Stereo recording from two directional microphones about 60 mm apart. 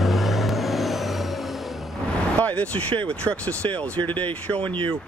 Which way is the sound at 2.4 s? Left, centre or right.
Left.